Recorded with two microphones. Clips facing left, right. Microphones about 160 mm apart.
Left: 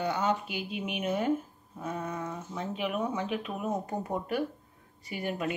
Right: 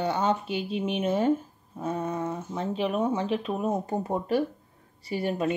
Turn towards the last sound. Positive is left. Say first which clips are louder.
# right 5 dB
turn(degrees=-30)  # may be behind; listen again after turning